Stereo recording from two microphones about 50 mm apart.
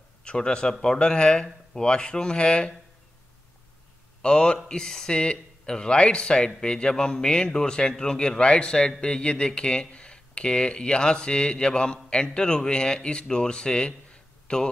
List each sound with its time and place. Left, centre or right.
0.2 s speech: centre
4.2 s speech: centre